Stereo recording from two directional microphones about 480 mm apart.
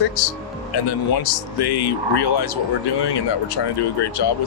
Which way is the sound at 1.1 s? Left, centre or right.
Left.